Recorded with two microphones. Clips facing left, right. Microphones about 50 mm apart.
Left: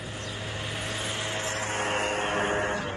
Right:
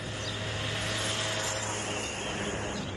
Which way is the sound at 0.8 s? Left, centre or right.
Centre.